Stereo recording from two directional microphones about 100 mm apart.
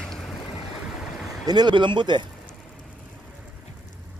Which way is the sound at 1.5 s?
45° right (ahead or behind).